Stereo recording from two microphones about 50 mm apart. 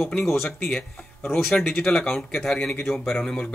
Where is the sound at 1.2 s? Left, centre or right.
Left.